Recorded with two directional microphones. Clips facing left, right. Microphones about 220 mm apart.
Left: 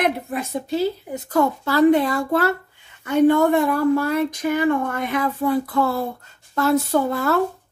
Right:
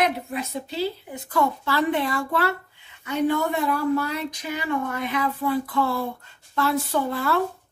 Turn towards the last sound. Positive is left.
turn(degrees=45)  # may be behind; listen again after turning